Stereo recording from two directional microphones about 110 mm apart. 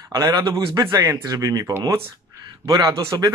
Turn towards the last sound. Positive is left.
turn(degrees=-35)  # may be behind; listen again after turning